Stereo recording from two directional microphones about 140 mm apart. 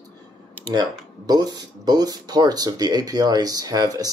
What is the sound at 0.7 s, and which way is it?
Speech, 30° right (ahead or behind).